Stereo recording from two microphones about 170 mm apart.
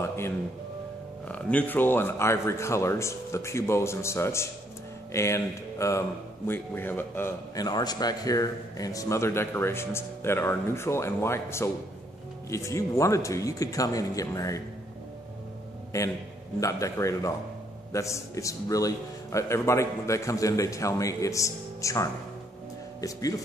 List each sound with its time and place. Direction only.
0.0 s music: 15° left (ahead or behind)
1.3 s a man's voice: 10° left (ahead or behind)
15.9 s a man's voice: 20° left (ahead or behind)